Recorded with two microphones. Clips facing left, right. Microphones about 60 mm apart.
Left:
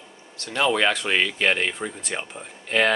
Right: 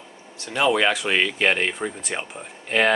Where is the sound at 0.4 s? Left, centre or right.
Centre.